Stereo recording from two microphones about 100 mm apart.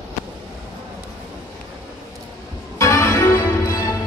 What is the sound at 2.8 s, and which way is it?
Music, 30° left (ahead or behind).